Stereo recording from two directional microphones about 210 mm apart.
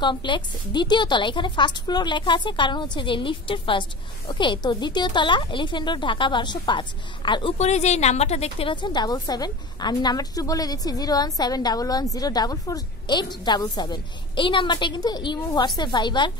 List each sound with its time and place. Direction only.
0.0 s speech: 20° left (ahead or behind)